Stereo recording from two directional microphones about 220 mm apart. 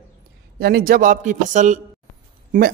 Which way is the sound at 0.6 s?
45° right (ahead or behind).